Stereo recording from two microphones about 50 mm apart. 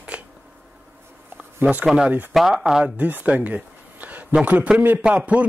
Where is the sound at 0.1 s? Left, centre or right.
Right.